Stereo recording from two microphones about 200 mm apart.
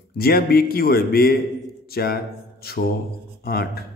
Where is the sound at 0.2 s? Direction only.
50° left (ahead or behind).